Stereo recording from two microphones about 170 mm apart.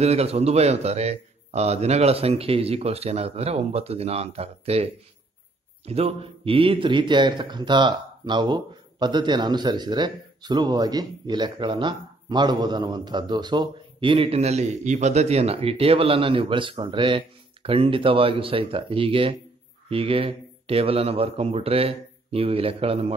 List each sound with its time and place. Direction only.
0.0 s a man's voice: 35° right (ahead or behind)